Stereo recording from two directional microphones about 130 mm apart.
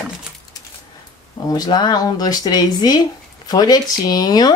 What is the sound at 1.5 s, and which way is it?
Speech, 30° left (ahead or behind).